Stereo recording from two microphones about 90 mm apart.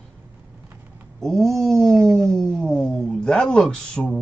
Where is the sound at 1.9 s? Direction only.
35° right (ahead or behind).